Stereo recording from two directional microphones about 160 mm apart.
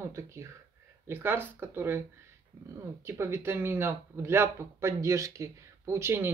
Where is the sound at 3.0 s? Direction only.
15° right (ahead or behind).